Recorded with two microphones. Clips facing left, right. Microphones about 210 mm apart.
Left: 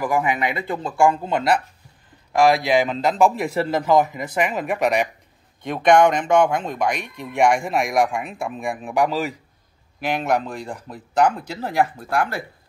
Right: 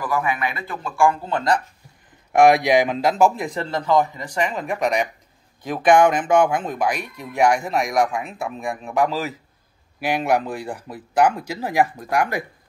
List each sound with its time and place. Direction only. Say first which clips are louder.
0.0 s a man's voice: left 2 dB; 15° left (ahead or behind)
2.3 s speech: right 2 dB; 20° right (ahead or behind)
3.6 s speech: left 1 dB; 10° left (ahead or behind); by 12.4 s 15° right (ahead or behind)